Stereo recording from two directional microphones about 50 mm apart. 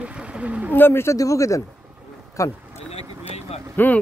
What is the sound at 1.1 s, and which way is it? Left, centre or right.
Speech, left.